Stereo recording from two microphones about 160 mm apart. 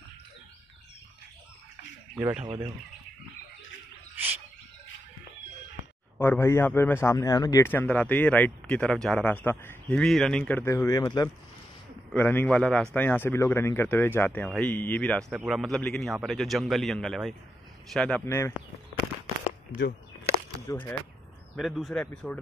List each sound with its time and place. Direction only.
2.4 s speech: 30° right (ahead or behind)
6.1 s speech: 15° left (ahead or behind)
7.7 s speech: 10° left (ahead or behind)
9.9 s speech: centre (ahead or behind); by 11.2 s 25° left (ahead or behind)
12.1 s speech: 10° left (ahead or behind)
20.6 s speech: 15° left (ahead or behind)
21.5 s speech: centre (ahead or behind)